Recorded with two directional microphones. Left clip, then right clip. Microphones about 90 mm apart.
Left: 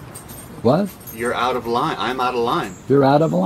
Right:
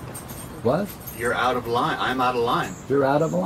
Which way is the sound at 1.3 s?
50° left (ahead or behind).